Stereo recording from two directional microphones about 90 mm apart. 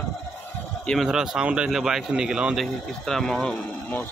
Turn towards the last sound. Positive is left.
turn(degrees=5)  # may be behind; listen again after turning